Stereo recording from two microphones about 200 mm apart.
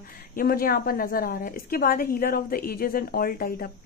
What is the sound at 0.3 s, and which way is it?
A woman's voice, 45° left (ahead or behind).